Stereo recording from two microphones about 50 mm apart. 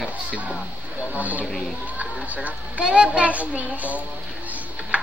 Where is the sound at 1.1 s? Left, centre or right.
Right.